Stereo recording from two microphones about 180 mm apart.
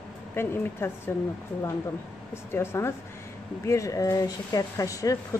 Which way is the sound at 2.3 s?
15° left (ahead or behind).